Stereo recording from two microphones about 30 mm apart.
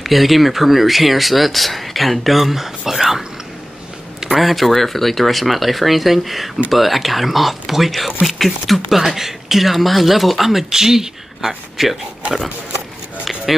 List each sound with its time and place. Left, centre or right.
0.0 s speech: centre
4.4 s speech: centre
10.7 s speech: centre
13.5 s speech: centre